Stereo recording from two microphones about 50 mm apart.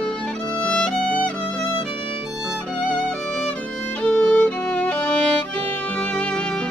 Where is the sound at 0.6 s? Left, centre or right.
Left.